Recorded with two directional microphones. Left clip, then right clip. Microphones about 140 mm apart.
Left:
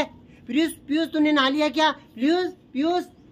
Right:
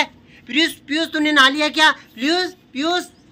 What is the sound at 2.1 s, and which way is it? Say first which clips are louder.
Speech: right 3 dB; 30° left (ahead or behind).